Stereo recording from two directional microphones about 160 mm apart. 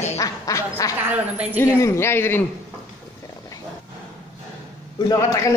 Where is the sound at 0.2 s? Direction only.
20° left (ahead or behind).